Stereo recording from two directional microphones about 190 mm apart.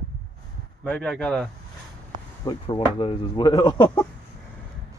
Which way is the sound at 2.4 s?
25° left (ahead or behind).